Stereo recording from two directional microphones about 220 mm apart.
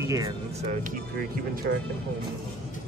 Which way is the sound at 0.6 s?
35° right (ahead or behind).